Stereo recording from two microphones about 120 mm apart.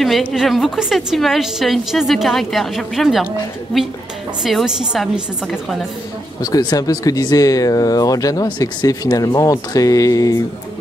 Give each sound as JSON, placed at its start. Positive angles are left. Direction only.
{"t": 0.0, "sound": "a woman's voice", "side_deg": 0}
{"t": 4.4, "sound": "a woman's voice", "side_deg": 0}
{"t": 6.4, "sound": "speech", "side_deg": 30}